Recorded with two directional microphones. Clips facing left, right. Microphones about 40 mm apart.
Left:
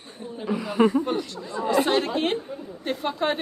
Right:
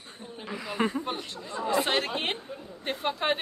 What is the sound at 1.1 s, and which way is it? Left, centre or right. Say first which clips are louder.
A man's voice: left 6 dB; right.